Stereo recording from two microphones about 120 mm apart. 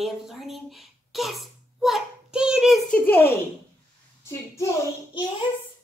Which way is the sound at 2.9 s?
15° left (ahead or behind).